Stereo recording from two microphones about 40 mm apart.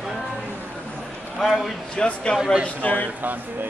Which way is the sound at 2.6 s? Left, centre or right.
Left.